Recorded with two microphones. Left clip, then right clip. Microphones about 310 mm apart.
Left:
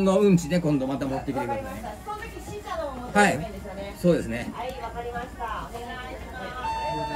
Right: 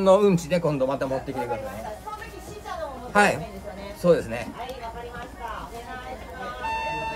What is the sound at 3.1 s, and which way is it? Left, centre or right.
Speech, centre.